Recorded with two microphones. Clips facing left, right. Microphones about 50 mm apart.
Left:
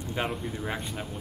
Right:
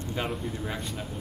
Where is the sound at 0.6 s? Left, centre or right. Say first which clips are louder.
Left 1 dB; left.